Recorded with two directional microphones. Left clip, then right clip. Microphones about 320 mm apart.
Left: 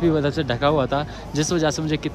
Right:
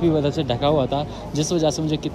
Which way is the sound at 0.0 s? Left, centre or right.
Centre.